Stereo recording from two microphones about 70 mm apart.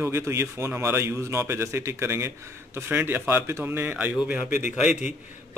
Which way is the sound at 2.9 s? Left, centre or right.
Right.